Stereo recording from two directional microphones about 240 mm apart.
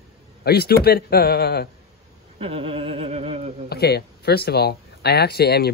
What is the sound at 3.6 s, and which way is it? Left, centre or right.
Speech, left.